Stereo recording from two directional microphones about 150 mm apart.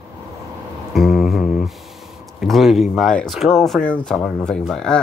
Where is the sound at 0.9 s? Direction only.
Centre (ahead or behind).